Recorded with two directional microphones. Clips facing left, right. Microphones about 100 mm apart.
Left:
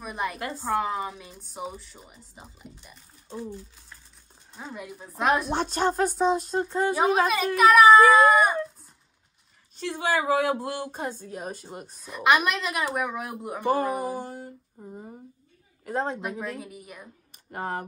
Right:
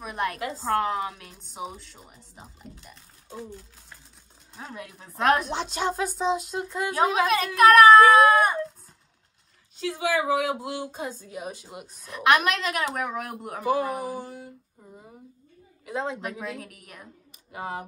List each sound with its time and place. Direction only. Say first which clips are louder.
0.0 s a woman's voice: right 2 dB; centre (ahead or behind)
4.6 s a woman's voice: left 1 dB; centre (ahead or behind)
5.5 s speech: left 3 dB; 50° left (ahead or behind)
7.2 s a woman's voice: right 2 dB; centre (ahead or behind)
9.9 s speech: left 1 dB; 45° left (ahead or behind)
12.0 s a woman's voice: right 1 dB; centre (ahead or behind)
14.2 s a sound: left 2 dB; 45° left (ahead or behind)
14.8 s speech: left 11 dB; 25° left (ahead or behind)
15.8 s a woman's voice: left 2 dB; 45° left (ahead or behind)
16.2 s a woman's voice: left 1 dB; centre (ahead or behind)
17.5 s speech: left 2 dB; 50° left (ahead or behind)